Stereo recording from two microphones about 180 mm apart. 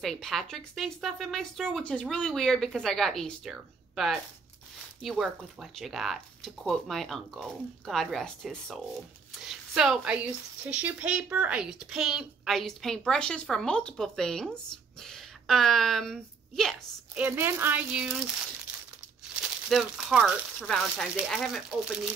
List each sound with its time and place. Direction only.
0.0 s speech: centre (ahead or behind)
17.1 s speech: 10° right (ahead or behind)
19.7 s speech: centre (ahead or behind)